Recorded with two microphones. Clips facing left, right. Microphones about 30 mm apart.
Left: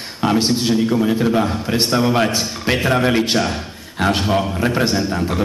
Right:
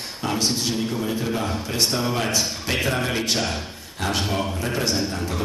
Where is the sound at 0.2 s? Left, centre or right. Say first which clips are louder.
Left 7 dB; left.